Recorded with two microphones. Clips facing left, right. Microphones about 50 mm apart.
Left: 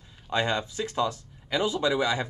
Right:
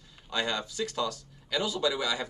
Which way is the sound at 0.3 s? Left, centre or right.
Left.